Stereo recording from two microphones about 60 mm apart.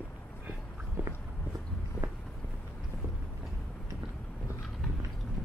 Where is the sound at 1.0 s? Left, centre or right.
Right.